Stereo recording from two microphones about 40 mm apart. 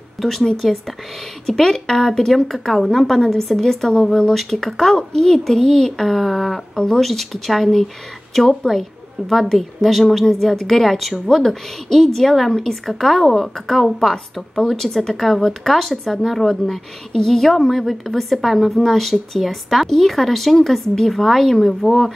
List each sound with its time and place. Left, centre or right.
0.2 s a woman's voice: centre
6.7 s speech: centre
7.0 s a woman's voice: centre
10.2 s a woman's voice: centre